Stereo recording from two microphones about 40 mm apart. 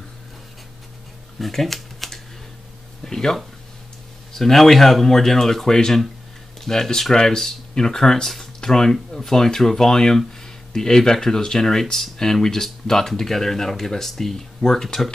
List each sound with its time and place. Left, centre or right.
1.4 s speech: centre